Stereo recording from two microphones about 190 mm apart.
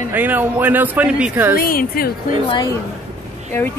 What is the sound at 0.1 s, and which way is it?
Speech, 10° right (ahead or behind).